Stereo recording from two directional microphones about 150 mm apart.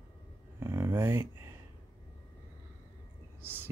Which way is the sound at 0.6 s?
20° right (ahead or behind).